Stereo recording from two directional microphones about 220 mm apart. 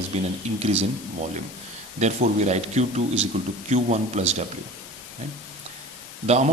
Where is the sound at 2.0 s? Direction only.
30° right (ahead or behind).